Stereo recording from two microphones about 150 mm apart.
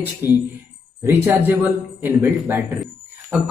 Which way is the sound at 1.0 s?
15° right (ahead or behind).